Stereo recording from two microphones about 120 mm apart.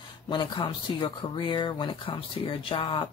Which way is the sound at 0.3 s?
40° left (ahead or behind).